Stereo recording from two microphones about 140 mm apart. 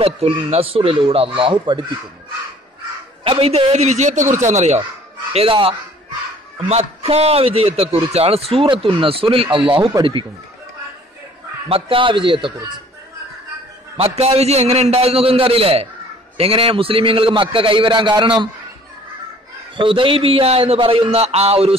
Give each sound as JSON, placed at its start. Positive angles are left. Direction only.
{"t": 0.0, "sound": "a man's voice", "side_deg": -45}
{"t": 3.3, "sound": "a man's voice", "side_deg": -45}
{"t": 5.3, "sound": "a man's voice", "side_deg": -40}
{"t": 11.7, "sound": "a man's voice", "side_deg": -40}
{"t": 13.9, "sound": "a man's voice", "side_deg": -45}
{"t": 19.8, "sound": "a man's voice", "side_deg": -40}